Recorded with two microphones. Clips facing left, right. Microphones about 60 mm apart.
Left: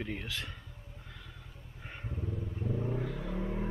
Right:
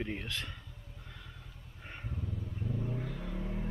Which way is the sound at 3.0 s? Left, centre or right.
Centre.